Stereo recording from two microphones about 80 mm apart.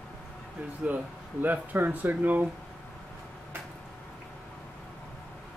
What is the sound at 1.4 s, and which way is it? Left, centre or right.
Speech, right.